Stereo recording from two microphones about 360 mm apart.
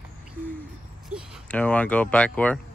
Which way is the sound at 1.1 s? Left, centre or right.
Centre.